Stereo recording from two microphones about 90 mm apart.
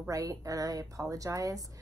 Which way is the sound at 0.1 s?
40° right (ahead or behind).